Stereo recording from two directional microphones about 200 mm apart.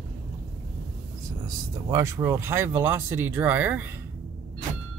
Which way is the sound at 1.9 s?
15° right (ahead or behind).